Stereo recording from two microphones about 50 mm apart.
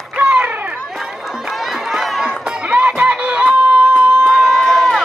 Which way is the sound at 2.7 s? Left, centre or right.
Right.